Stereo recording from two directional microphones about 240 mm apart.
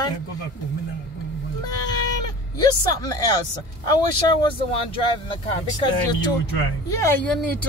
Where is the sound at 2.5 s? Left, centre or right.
Centre.